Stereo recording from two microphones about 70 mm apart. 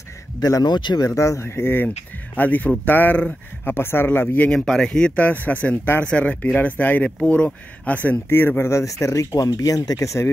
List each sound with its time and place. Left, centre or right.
0.4 s speech: left
1.0 s speech: left
1.4 s speech: left
2.3 s speech: left
3.6 s speech: left
4.5 s speech: centre; by 8.2 s left
8.3 s speech: left